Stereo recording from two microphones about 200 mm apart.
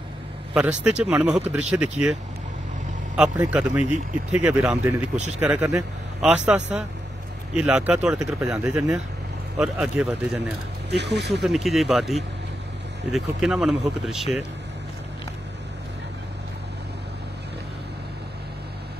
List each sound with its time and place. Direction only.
0.6 s a man's voice: 5° right (ahead or behind)
3.2 s a man's voice: 5° right (ahead or behind)
11.0 s speech: 60° right (ahead or behind)
11.4 s a man's voice: centre (ahead or behind)